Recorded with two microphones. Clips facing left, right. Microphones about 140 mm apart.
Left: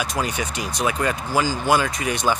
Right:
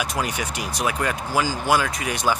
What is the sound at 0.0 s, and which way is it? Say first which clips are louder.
Speech: left 1 dB; 10° right (ahead or behind).